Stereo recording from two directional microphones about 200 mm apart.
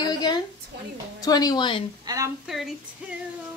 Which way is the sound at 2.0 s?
15° right (ahead or behind).